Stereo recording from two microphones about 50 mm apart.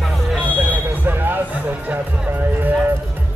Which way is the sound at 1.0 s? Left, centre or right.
Right.